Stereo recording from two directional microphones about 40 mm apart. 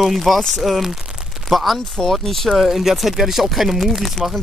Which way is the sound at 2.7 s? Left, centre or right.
Centre.